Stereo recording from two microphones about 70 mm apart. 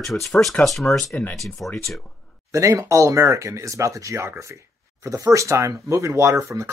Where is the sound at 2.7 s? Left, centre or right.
Right.